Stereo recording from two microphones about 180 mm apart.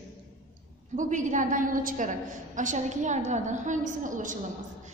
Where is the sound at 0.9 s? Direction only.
45° right (ahead or behind).